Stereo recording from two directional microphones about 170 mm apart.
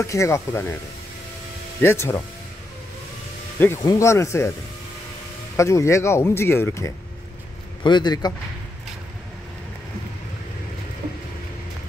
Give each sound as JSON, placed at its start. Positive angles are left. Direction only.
{"t": 0.0, "sound": "speech", "side_deg": 15}
{"t": 1.8, "sound": "speech", "side_deg": 15}
{"t": 3.5, "sound": "speech", "side_deg": 10}
{"t": 5.6, "sound": "speech", "side_deg": 15}
{"t": 7.8, "sound": "speech", "side_deg": 25}